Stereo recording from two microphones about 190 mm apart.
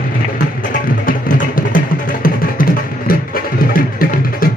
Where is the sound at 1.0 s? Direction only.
45° left (ahead or behind).